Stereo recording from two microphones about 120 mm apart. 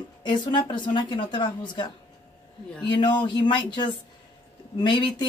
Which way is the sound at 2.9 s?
40° left (ahead or behind).